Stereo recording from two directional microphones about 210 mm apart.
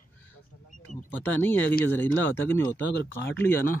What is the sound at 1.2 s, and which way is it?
Speech, 10° left (ahead or behind).